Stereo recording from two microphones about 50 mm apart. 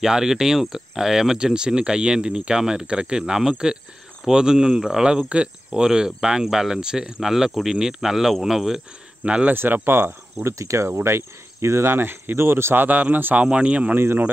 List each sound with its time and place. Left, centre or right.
0.0 s speech: centre
9.2 s speech: right
9.5 s speech: right
10.4 s cricket: right
12.7 s a man's voice: right
13.5 s speech: right
13.9 s speech: right